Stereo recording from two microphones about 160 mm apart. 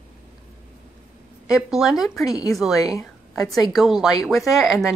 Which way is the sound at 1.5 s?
5° right (ahead or behind).